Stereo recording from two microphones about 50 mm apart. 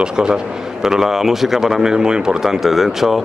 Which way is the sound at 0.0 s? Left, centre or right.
Centre.